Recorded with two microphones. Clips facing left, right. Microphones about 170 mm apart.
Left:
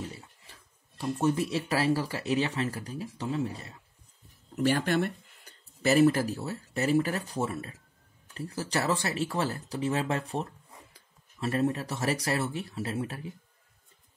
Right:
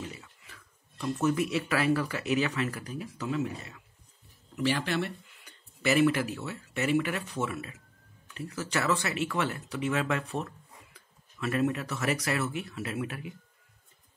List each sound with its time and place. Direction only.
0.0 s speech: 35° left (ahead or behind)
4.6 s speech: 45° left (ahead or behind)